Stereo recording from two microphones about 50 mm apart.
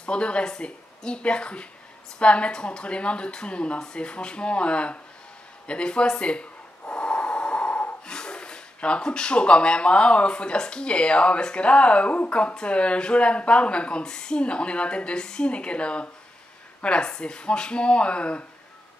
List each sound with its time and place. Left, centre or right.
0.0 s a woman's voice: left
6.8 s snort: left
16.8 s a woman's voice: centre